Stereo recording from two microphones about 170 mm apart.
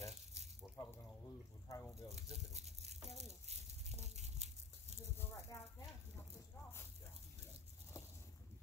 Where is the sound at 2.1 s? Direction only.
40° right (ahead or behind).